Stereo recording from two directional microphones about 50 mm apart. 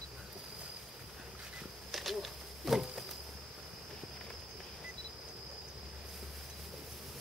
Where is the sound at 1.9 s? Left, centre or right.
Centre.